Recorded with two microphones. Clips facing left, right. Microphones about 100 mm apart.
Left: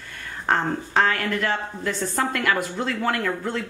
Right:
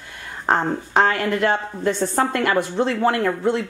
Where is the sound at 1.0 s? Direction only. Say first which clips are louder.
Right 4 dB; 25° right (ahead or behind).